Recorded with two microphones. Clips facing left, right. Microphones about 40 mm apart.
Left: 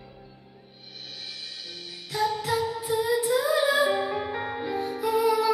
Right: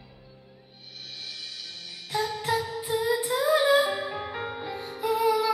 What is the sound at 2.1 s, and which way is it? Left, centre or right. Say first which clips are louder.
Music: left 2 dB; centre.